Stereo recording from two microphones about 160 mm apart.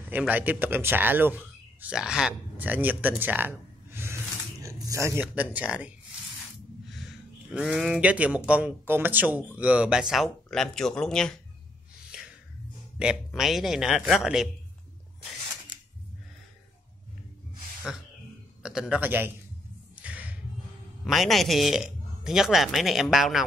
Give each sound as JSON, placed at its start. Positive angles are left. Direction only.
{"t": 0.3, "sound": "speech", "side_deg": -10}
{"t": 7.5, "sound": "speech", "side_deg": 0}
{"t": 12.1, "sound": "a sound", "side_deg": -5}
{"t": 13.0, "sound": "speech", "side_deg": -5}
{"t": 18.6, "sound": "a man's voice", "side_deg": -5}
{"t": 20.0, "sound": "a sound", "side_deg": -10}
{"t": 21.0, "sound": "speech", "side_deg": 0}